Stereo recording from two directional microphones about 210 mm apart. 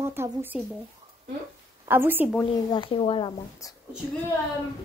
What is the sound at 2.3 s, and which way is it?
Speech, 20° left (ahead or behind).